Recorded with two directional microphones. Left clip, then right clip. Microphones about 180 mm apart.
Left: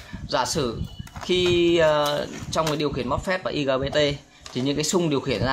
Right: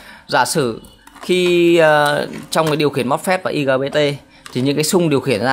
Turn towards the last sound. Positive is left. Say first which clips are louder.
# right 8 dB
turn(degrees=-35)  # may be behind; listen again after turning